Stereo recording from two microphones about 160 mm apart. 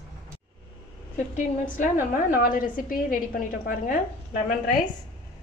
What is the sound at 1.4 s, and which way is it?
A woman's voice, 50° left (ahead or behind).